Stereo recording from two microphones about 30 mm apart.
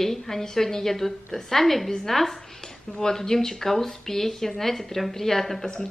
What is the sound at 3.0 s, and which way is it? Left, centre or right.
A woman's voice, centre.